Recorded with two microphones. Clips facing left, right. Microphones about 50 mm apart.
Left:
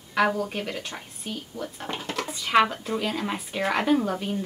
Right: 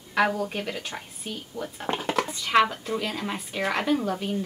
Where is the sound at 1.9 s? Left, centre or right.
Centre.